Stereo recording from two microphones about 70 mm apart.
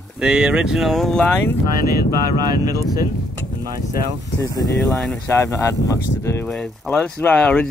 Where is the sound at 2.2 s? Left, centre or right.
Right.